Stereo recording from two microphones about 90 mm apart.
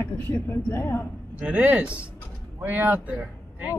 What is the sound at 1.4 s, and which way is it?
Speech, 15° right (ahead or behind).